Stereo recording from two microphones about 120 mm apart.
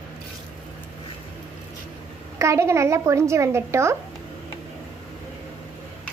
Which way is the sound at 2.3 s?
25° right (ahead or behind).